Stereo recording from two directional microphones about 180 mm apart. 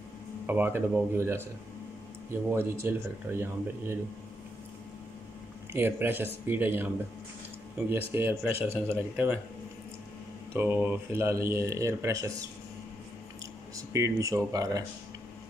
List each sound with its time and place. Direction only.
0.5 s speech: 10° right (ahead or behind)
2.5 s speech: 15° right (ahead or behind)
5.7 s speech: 10° right (ahead or behind)
8.1 s speech: 10° right (ahead or behind)
10.5 s speech: 10° right (ahead or behind)
13.7 s speech: 15° right (ahead or behind)